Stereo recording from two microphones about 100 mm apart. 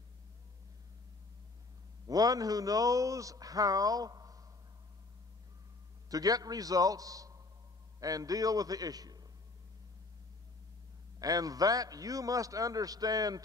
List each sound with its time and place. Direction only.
2.0 s speech: 40° right (ahead or behind)
6.0 s a man's voice: 40° right (ahead or behind)
11.1 s speech: 40° right (ahead or behind)